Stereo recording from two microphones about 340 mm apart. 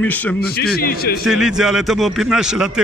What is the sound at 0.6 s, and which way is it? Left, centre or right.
Speech, left.